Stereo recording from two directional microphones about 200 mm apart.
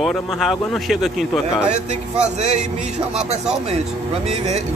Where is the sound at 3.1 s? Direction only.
35° right (ahead or behind).